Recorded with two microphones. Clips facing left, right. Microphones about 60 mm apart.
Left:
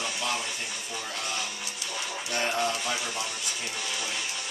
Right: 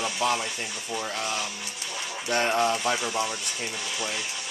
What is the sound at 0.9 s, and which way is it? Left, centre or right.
Speech, right.